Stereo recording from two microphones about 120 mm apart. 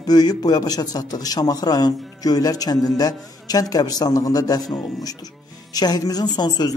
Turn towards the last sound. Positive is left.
turn(degrees=35)  # may be behind; listen again after turning